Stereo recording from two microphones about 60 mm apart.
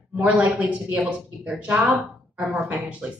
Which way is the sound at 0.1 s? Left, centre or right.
Right.